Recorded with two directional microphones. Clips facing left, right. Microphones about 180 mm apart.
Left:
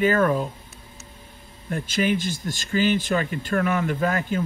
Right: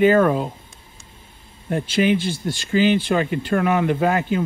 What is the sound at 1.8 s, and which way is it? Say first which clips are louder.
Speech: right 4 dB; 45° left (ahead or behind).